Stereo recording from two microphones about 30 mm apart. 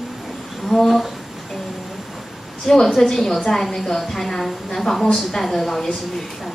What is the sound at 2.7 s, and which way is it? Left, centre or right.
A woman's voice, centre.